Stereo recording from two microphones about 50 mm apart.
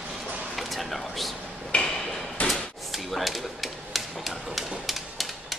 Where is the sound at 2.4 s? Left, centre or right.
Left.